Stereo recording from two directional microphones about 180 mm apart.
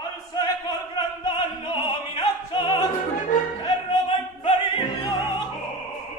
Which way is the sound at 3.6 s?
30° left (ahead or behind).